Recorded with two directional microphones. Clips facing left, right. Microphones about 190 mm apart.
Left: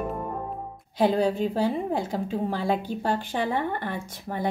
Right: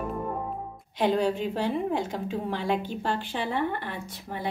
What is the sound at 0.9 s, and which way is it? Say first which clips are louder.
A woman's voice: left 2 dB; 35° left (ahead or behind).